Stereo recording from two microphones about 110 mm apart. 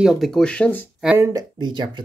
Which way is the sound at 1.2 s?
35° right (ahead or behind).